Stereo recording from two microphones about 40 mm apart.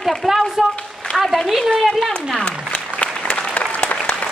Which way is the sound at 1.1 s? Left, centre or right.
Centre.